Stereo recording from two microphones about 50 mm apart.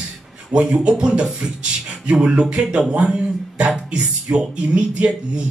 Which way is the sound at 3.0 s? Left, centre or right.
Centre.